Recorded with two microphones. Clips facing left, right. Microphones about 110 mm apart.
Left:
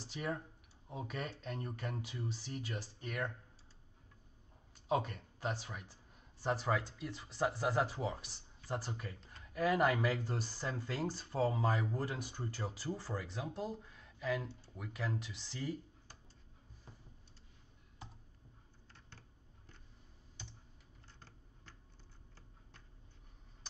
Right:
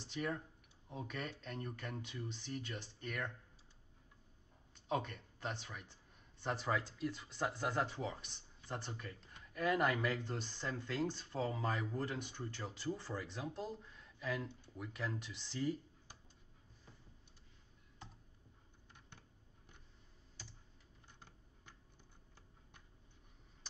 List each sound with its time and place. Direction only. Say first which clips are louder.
0.0 s speech: left 1 dB; 5° left (ahead or behind)
4.8 s speech: left 4 dB; 5° left (ahead or behind)
18.9 s computer keyboard: left 1 dB; 15° right (ahead or behind)